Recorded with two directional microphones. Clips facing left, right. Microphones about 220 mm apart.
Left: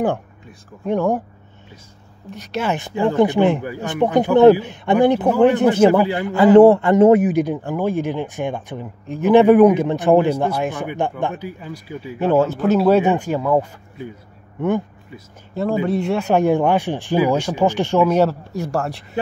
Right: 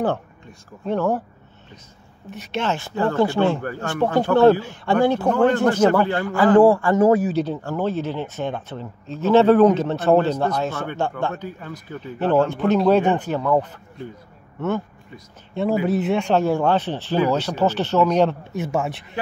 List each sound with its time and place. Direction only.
0.8 s speech: 15° left (ahead or behind)
2.6 s speech: 15° left (ahead or behind)
6.2 s speech: 25° left (ahead or behind)
15.5 s speech: centre (ahead or behind)
16.3 s speech: 15° left (ahead or behind); by 19.0 s centre (ahead or behind)